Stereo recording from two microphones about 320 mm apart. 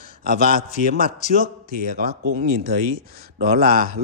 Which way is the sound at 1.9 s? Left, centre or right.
Right.